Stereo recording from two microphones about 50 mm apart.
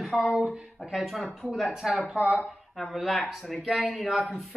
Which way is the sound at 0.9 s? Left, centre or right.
Centre.